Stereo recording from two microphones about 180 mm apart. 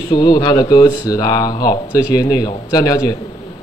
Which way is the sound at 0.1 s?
25° left (ahead or behind).